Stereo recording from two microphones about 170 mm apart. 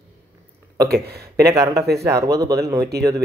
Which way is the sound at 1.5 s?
20° right (ahead or behind).